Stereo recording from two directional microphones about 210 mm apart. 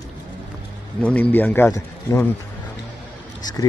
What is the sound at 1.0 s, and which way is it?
Speech, 10° left (ahead or behind).